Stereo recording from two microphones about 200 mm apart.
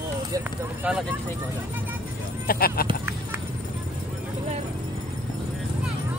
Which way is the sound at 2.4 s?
50° left (ahead or behind).